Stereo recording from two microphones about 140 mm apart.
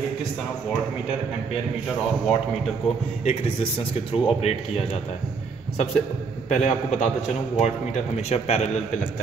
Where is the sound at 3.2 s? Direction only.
45° left (ahead or behind).